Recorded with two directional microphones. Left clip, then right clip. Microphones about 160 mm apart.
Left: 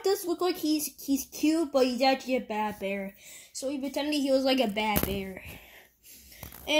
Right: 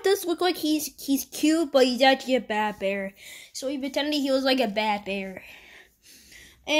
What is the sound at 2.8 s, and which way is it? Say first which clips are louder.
A woman's voice: right 6 dB; 5° right (ahead or behind).